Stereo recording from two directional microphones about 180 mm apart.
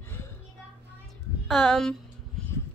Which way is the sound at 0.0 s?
10° left (ahead or behind).